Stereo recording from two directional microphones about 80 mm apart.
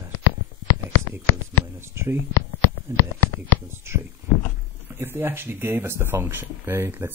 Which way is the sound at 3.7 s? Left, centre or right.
Right.